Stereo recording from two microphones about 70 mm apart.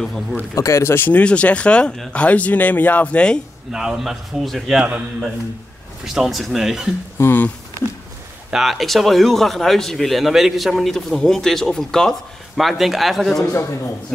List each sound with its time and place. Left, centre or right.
0.0 s speech: centre
0.6 s speech: left
1.2 s speech: centre
3.7 s speech: centre
6.1 s speech: centre
7.2 s speech: left
8.5 s speech: centre
13.4 s a man's voice: left